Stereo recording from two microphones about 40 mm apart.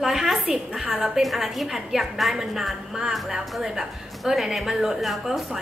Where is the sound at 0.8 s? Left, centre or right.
Centre.